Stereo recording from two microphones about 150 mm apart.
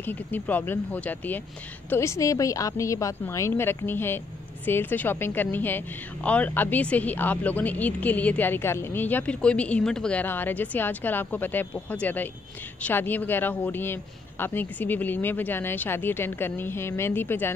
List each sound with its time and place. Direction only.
0.0 s a woman's voice: 10° left (ahead or behind)